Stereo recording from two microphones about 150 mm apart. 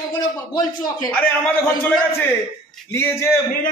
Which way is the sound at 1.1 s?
10° left (ahead or behind).